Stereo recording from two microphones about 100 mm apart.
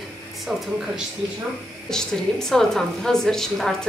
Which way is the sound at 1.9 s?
5° left (ahead or behind).